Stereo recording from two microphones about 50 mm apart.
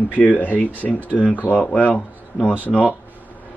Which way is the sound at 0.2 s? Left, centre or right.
Left.